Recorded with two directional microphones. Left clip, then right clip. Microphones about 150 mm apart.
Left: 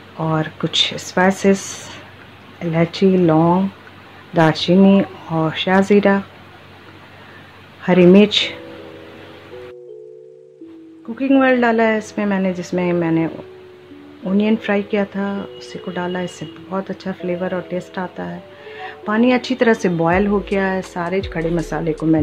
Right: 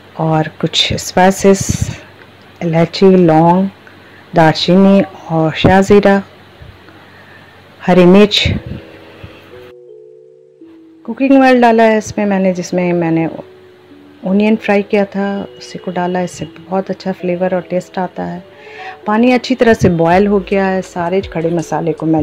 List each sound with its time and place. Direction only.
0.2 s speech: 30° right (ahead or behind)
7.8 s speech: 30° right (ahead or behind)
11.1 s speech: 35° right (ahead or behind)
14.3 s speech: 30° right (ahead or behind)